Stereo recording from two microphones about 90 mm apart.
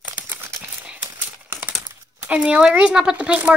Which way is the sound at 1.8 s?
15° right (ahead or behind).